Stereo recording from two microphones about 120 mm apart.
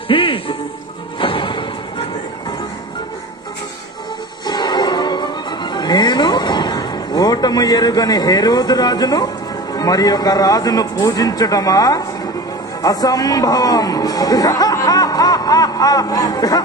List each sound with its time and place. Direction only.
0.1 s music: 45° left (ahead or behind)
4.5 s music: 35° left (ahead or behind)
9.8 s speech: 35° left (ahead or behind)